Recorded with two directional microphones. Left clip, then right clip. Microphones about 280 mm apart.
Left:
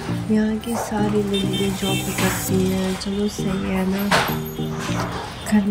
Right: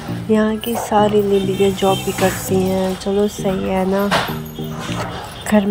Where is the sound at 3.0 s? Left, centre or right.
Centre.